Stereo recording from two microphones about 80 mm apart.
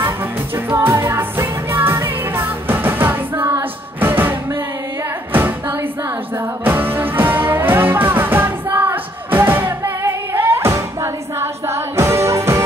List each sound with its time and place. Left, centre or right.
0.8 s music: right
6.6 s music: right